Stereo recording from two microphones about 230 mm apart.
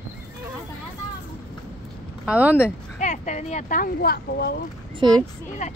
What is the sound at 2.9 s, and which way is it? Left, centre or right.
Speech, left.